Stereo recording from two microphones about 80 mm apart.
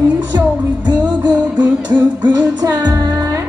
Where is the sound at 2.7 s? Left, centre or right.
Right.